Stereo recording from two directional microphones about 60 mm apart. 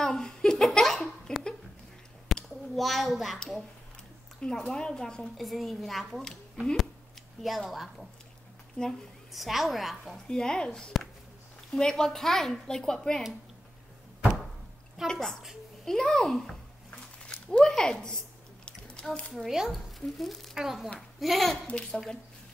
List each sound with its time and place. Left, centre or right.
0.0 s a sound: centre
2.7 s a woman's voice: centre
4.4 s a woman's voice: centre
7.4 s a woman's voice: centre
9.3 s a woman's voice: centre
10.2 s speech: centre
14.2 s door: centre
15.0 s speech: centre
18.7 s a sound: centre
19.3 s a woman's voice: centre